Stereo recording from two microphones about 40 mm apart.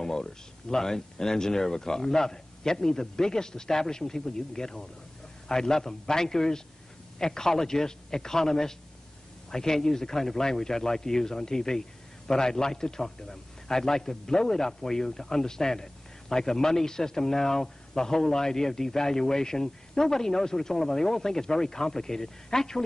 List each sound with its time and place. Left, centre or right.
0.0 s a man's voice: centre